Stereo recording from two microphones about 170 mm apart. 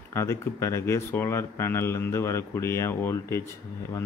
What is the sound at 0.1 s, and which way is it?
Speech, 15° left (ahead or behind).